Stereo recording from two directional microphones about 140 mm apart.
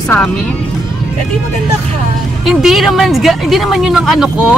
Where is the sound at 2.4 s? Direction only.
Centre (ahead or behind).